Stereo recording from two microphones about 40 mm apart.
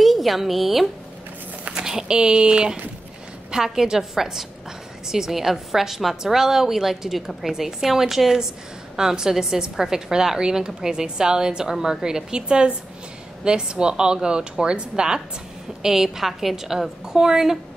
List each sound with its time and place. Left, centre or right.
0.0 s a woman's voice: centre
1.8 s a woman's voice: centre
15.8 s a woman's voice: centre